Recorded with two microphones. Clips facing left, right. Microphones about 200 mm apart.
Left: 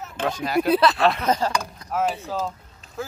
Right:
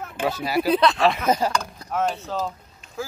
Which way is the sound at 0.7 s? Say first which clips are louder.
Even; 5° left (ahead or behind).